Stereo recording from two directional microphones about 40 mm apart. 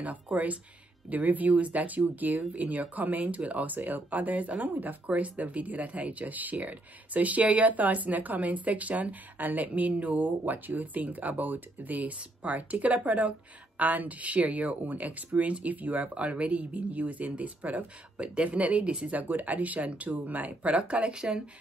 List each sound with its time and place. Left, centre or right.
0.0 s speech: right
19.1 s speech: right
20.7 s speech: right